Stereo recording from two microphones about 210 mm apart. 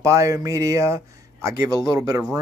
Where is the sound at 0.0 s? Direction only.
15° right (ahead or behind).